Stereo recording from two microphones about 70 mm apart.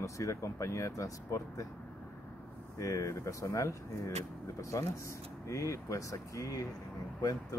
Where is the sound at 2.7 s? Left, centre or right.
Left.